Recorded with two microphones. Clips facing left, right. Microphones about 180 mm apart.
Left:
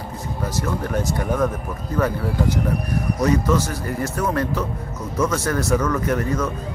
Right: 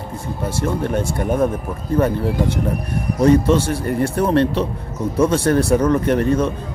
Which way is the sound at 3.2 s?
30° right (ahead or behind).